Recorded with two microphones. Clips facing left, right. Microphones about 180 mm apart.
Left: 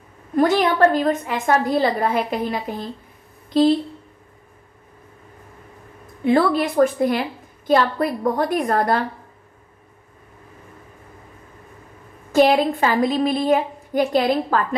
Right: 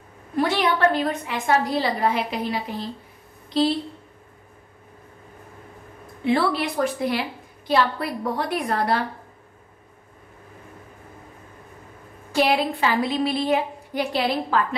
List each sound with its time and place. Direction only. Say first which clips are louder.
0.4 s a woman's voice: left 5 dB; 40° left (ahead or behind)
1.5 s a woman's voice: left 3 dB; 55° left (ahead or behind)
6.2 s a woman's voice: left 4 dB; 50° left (ahead or behind)
12.3 s a woman's voice: left 6 dB; 40° left (ahead or behind)